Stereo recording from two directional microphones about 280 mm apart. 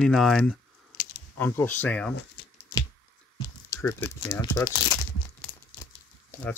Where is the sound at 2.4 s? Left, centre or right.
Left.